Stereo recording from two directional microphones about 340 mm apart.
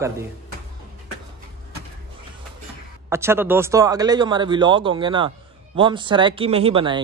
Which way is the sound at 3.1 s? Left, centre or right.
Centre.